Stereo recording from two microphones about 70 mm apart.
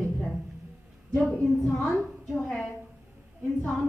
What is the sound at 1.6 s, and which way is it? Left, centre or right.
Speech, centre.